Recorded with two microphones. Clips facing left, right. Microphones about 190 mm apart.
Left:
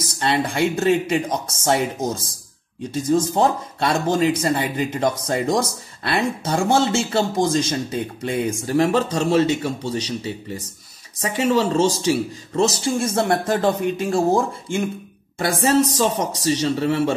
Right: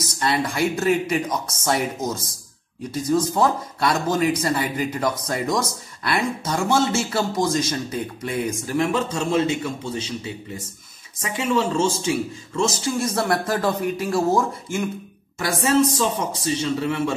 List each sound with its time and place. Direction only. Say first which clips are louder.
0.0 s speech: left 2 dB; 25° left (ahead or behind)
15.3 s speech: left 2 dB; 35° left (ahead or behind)